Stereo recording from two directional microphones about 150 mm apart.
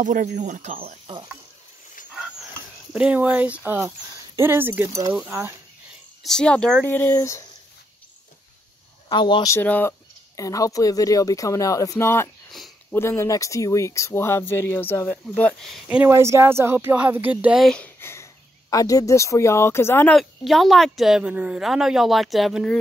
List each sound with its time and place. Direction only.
0.0 s speech: 60° right (ahead or behind)
0.7 s stir: 40° right (ahead or behind)
2.9 s speech: 10° right (ahead or behind)
6.2 s speech: 5° left (ahead or behind)
9.1 s speech: 30° left (ahead or behind)
9.5 s speech: 10° left (ahead or behind)
10.3 s speech: 20° left (ahead or behind)
12.4 s sniff: centre (ahead or behind)
12.9 s speech: 15° left (ahead or behind)
16.0 s speech: 20° right (ahead or behind)
17.6 s speech: 10° left (ahead or behind)
20.1 s speech: centre (ahead or behind)